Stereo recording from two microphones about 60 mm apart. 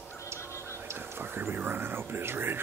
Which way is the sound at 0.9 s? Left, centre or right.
Right.